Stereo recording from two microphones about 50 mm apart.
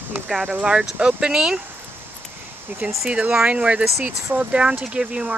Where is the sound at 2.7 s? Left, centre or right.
Right.